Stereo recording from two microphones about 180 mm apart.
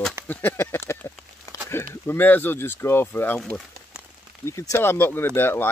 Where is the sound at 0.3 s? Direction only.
10° left (ahead or behind).